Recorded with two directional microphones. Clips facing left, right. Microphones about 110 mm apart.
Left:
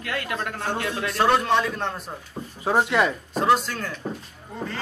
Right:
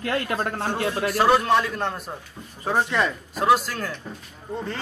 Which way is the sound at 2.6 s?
15° left (ahead or behind).